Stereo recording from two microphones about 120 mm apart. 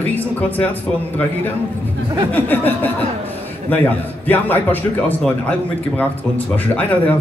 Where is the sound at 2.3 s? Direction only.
15° left (ahead or behind).